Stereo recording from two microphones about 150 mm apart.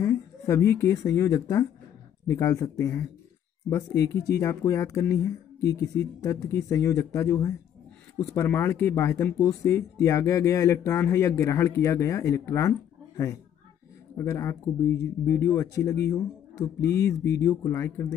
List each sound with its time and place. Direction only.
0.0 s speech: 20° left (ahead or behind)